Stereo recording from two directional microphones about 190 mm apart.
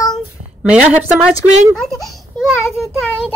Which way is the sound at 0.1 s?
5° right (ahead or behind).